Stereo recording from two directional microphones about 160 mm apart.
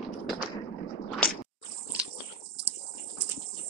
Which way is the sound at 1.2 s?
10° left (ahead or behind).